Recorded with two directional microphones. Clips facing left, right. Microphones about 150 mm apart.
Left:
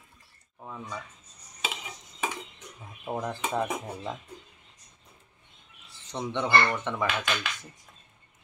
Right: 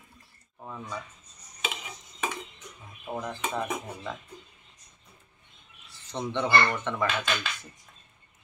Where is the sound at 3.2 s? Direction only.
30° left (ahead or behind).